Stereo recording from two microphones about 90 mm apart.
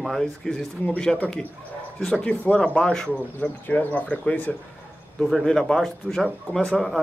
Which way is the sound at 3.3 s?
20° left (ahead or behind).